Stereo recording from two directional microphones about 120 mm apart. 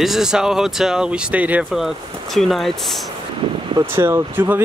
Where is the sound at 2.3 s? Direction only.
Centre (ahead or behind).